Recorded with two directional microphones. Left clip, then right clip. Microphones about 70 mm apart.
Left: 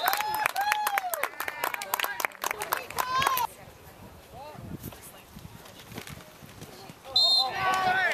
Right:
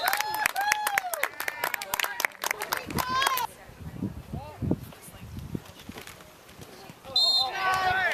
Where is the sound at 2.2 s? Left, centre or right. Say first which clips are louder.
Right 2 dB; right.